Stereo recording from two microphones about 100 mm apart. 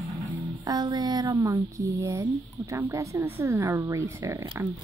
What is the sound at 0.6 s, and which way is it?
Speech, 40° right (ahead or behind).